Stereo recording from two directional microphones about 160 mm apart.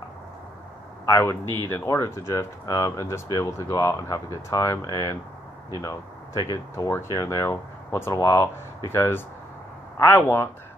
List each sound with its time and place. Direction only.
1.0 s speech: 20° left (ahead or behind)